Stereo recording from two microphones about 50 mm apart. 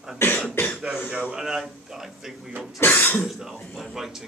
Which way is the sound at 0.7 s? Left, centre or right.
Centre.